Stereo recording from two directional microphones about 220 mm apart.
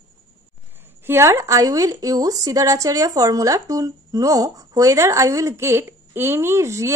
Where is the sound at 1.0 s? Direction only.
10° right (ahead or behind).